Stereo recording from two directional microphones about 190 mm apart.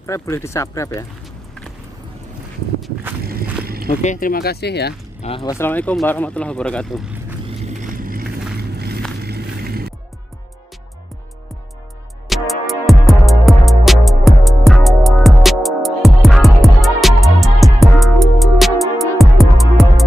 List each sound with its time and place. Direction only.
0.0 s speech: 15° left (ahead or behind)
3.6 s a sound: 55° right (ahead or behind)
3.9 s speech: 40° left (ahead or behind); by 4.9 s 60° left (ahead or behind)
5.2 s speech: 30° left (ahead or behind)
5.5 s speech: 10° left (ahead or behind)
7.4 s vehicle: 40° right (ahead or behind)
8.5 s a sound: 55° right (ahead or behind)
12.3 s music: centre (ahead or behind)